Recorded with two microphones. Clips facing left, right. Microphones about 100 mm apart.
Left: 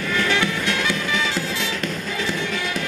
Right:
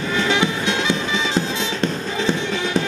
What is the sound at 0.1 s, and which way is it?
Music, 20° right (ahead or behind).